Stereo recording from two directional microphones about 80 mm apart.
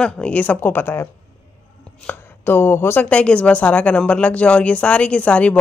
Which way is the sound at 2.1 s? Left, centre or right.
Left.